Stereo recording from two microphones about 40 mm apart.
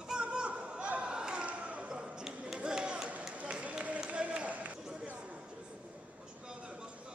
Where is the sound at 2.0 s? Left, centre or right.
Centre.